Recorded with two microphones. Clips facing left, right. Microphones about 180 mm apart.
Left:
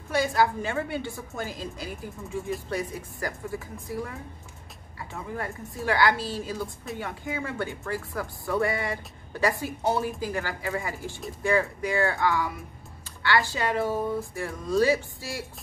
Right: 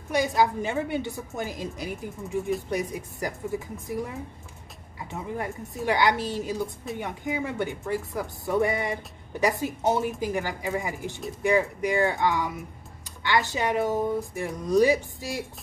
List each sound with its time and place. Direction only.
0.1 s speech: 20° right (ahead or behind)